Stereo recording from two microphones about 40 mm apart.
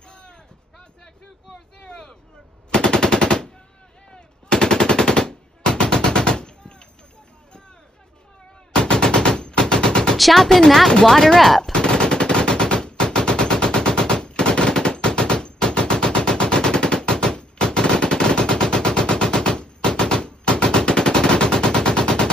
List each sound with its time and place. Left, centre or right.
0.1 s a sound: left
1.8 s vehicle: centre
2.7 s machine gun: left
8.7 s machine gun: left
10.1 s speech: centre
10.9 s speech: centre
11.3 s speech: centre
11.7 s machine gun: left